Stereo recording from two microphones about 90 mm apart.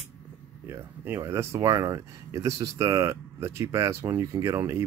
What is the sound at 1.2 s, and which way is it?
Speech, 30° right (ahead or behind).